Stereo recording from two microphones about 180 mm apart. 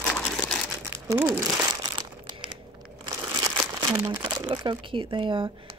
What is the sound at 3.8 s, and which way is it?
Crumpling, 20° right (ahead or behind).